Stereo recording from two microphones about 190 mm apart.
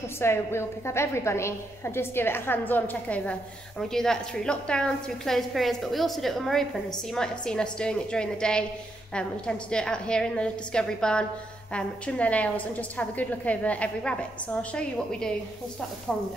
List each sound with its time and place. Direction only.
0.2 s a woman's voice: 15° left (ahead or behind)